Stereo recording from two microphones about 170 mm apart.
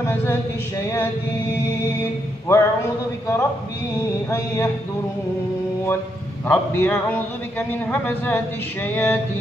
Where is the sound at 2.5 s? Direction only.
15° left (ahead or behind).